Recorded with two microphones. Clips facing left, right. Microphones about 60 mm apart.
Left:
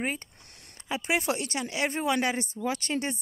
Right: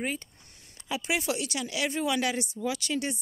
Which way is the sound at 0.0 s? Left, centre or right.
Left.